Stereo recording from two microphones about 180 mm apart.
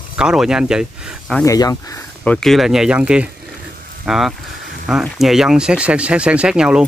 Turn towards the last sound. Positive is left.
turn(degrees=-5)  # may be behind; listen again after turning